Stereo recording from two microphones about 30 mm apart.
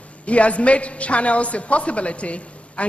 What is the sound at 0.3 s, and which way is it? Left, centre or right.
A man's voice, left.